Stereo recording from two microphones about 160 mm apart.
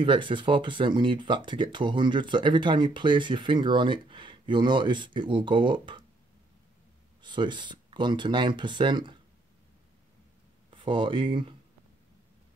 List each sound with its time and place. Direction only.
0.0 s speech: 30° right (ahead or behind)
7.2 s speech: 30° right (ahead or behind)
10.7 s speech: 30° right (ahead or behind)